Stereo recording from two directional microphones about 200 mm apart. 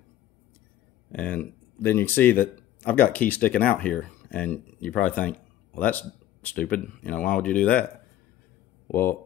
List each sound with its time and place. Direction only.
1.1 s speech: 5° left (ahead or behind)
8.8 s speech: 10° left (ahead or behind)